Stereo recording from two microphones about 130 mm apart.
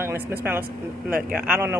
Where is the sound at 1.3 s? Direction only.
5° right (ahead or behind).